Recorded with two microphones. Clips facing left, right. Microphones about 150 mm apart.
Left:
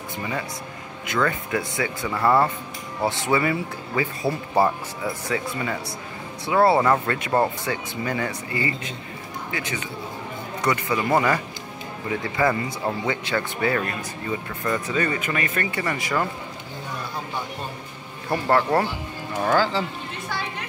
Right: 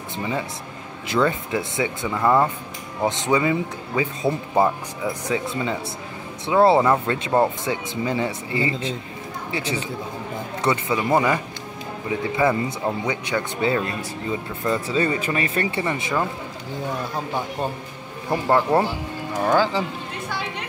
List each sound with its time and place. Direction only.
1.0 s speech: 25° right (ahead or behind)
6.8 s speech: 10° right (ahead or behind)
7.3 s speech: 20° right (ahead or behind)
18.3 s speech: 15° right (ahead or behind)